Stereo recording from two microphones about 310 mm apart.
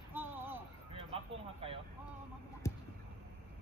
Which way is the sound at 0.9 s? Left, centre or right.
Centre.